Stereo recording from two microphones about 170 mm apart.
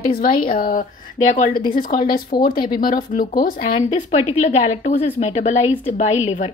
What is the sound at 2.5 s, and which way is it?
Speech, 25° left (ahead or behind).